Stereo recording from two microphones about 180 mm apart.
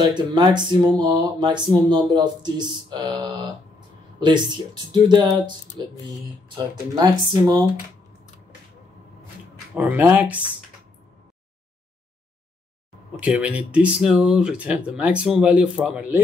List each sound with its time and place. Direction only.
0.0 s speech: 25° right (ahead or behind)
4.9 s speech: 25° right (ahead or behind)
9.8 s speech: 10° right (ahead or behind)
13.2 s speech: 5° right (ahead or behind)